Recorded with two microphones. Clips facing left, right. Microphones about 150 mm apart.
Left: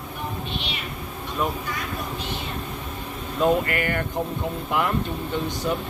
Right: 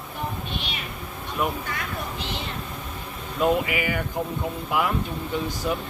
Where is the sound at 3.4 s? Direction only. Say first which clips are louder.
Left 1 dB; 5° right (ahead or behind).